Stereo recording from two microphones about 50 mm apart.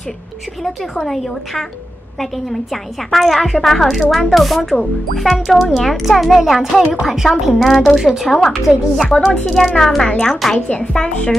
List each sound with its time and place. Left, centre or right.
0.9 s a woman's voice: centre
8.0 s a woman's voice: centre
8.3 s a woman's voice: centre
9.1 s a woman's voice: centre